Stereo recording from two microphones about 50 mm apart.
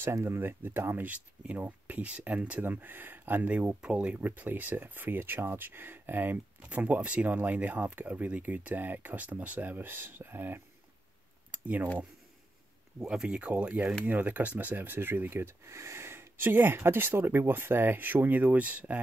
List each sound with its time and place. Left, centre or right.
0.0 s speech: right
1.0 s speech: right
2.6 s speech: right
11.5 s a sound: right
13.0 s speech: centre
13.4 s speech: right